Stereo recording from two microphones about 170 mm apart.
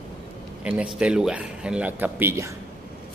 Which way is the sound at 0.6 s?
5° right (ahead or behind).